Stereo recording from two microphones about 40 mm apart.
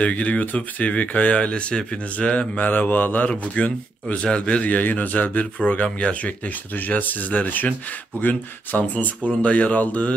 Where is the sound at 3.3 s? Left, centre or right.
Left.